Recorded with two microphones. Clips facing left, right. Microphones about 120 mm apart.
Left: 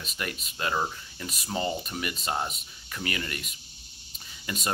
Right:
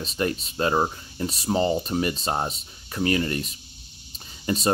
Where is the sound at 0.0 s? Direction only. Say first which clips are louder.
Right 10 dB; 30° right (ahead or behind).